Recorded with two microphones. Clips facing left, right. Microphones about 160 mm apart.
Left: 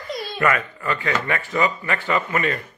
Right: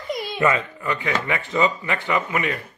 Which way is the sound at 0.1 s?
20° right (ahead or behind).